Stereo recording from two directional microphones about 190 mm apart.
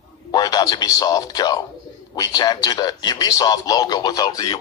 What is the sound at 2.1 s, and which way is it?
Speech, 20° left (ahead or behind).